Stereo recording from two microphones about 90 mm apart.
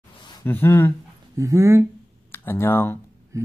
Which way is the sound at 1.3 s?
35° right (ahead or behind).